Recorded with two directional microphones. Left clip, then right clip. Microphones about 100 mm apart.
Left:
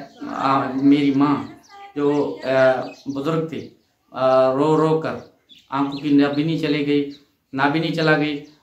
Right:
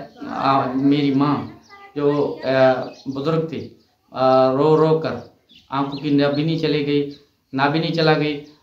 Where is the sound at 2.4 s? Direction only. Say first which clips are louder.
Even; 30° right (ahead or behind).